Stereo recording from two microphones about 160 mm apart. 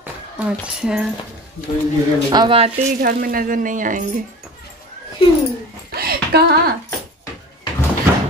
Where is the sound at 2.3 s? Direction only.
30° right (ahead or behind).